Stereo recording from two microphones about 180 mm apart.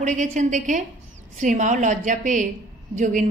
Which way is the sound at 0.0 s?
40° right (ahead or behind).